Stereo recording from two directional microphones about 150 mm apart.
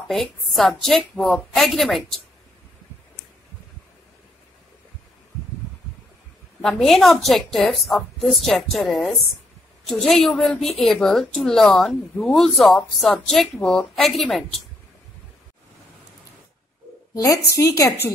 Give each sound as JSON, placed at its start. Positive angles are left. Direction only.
{"t": 0.1, "sound": "a woman's voice", "side_deg": 0}
{"t": 6.6, "sound": "a woman's voice", "side_deg": 0}
{"t": 17.1, "sound": "a woman's voice", "side_deg": 20}